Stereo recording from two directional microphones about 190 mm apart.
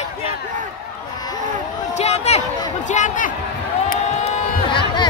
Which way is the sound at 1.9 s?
35° left (ahead or behind).